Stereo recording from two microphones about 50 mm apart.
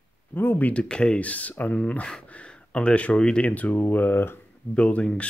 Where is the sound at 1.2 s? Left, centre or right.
Left.